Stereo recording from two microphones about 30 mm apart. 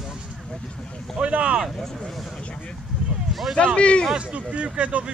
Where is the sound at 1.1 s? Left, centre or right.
Right.